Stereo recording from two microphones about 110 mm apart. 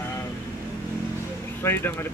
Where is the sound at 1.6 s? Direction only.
20° left (ahead or behind).